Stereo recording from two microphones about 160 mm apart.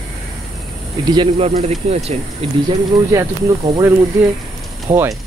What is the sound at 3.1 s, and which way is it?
Speech, 15° right (ahead or behind).